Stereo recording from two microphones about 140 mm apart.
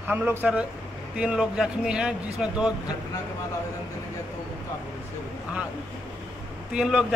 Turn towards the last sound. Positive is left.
turn(degrees=-5)  # may be behind; listen again after turning